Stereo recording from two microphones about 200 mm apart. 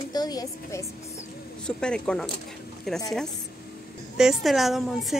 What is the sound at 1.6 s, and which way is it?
A woman's voice, 5° left (ahead or behind).